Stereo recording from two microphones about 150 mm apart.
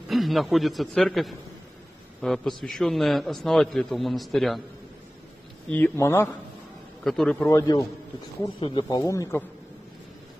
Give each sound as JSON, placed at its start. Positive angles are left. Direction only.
{"t": 0.1, "sound": "a man's voice", "side_deg": 0}
{"t": 5.7, "sound": "speech", "side_deg": 10}
{"t": 7.1, "sound": "a man's voice", "side_deg": 0}
{"t": 7.3, "sound": "speech", "side_deg": 20}
{"t": 8.5, "sound": "speech", "side_deg": 35}